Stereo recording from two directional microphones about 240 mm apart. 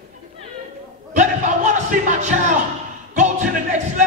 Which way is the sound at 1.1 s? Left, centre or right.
Right.